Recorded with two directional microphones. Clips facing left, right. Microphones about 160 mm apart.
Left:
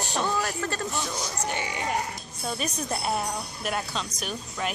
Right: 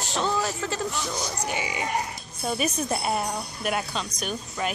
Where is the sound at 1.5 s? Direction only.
5° right (ahead or behind).